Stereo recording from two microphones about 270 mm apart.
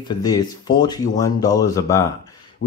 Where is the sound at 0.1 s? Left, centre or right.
Centre.